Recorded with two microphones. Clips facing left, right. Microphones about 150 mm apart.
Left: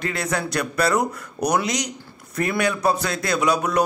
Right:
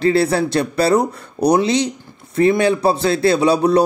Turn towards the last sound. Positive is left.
turn(degrees=-30)  # may be behind; listen again after turning